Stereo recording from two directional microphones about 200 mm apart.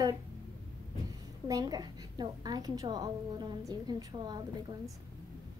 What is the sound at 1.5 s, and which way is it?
A woman's voice, 20° right (ahead or behind).